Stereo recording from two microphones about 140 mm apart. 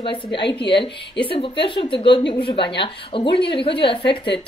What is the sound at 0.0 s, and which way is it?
Speech, 35° left (ahead or behind).